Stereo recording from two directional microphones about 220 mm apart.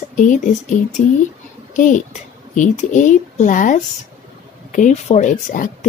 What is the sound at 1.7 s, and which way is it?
Speech, 35° left (ahead or behind).